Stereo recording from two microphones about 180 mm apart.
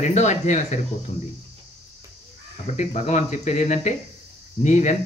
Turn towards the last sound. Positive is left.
turn(degrees=40)  # may be behind; listen again after turning